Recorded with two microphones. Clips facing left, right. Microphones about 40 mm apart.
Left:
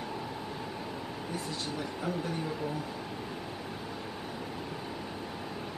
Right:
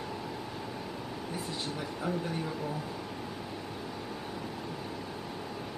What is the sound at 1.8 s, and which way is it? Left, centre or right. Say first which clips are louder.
Speech: right 1 dB; centre.